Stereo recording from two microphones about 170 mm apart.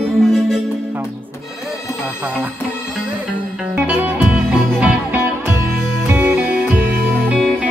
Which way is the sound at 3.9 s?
10° right (ahead or behind).